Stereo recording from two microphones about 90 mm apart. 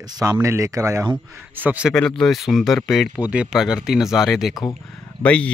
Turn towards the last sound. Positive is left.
turn(degrees=15)  # may be behind; listen again after turning